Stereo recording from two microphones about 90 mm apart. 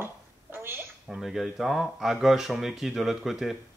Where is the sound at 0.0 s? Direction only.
25° right (ahead or behind).